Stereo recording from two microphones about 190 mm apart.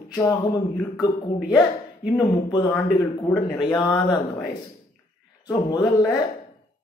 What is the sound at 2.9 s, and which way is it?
A man's voice, 15° left (ahead or behind).